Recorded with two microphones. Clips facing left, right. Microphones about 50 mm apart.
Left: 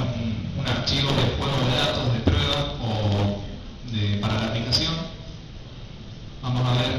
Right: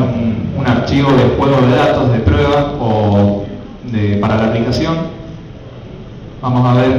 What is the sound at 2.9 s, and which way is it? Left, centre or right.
Mantra, right.